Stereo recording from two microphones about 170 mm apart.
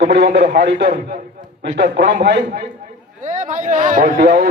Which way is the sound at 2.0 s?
60° right (ahead or behind).